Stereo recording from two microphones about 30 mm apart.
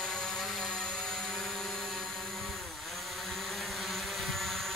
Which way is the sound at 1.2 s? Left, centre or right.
Centre.